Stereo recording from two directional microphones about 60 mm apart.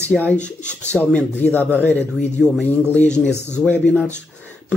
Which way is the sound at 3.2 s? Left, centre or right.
Right.